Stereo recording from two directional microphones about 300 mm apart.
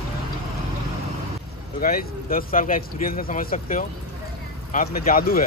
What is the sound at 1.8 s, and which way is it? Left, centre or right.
Speech, left.